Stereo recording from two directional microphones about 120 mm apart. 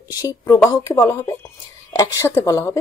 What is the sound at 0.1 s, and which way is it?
Speech, 30° left (ahead or behind).